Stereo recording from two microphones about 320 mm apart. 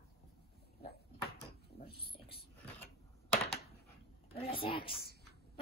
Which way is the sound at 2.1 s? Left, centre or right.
Centre.